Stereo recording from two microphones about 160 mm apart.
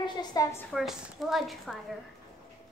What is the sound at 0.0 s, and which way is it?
Speech, 25° left (ahead or behind).